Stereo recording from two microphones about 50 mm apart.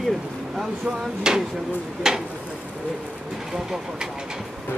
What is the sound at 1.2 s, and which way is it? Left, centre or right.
Speech, centre.